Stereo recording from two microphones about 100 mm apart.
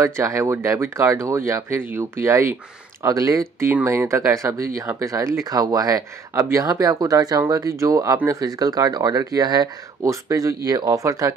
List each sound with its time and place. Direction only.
0.0 s speech: 30° right (ahead or behind)